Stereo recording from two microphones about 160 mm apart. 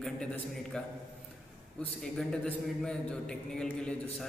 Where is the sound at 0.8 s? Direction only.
5° left (ahead or behind).